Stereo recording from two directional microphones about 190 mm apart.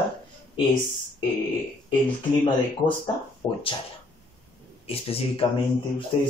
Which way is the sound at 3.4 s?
20° left (ahead or behind).